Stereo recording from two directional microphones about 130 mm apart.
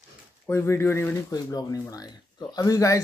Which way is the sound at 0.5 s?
20° left (ahead or behind).